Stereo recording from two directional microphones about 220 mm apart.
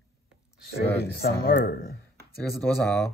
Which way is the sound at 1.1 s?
45° left (ahead or behind).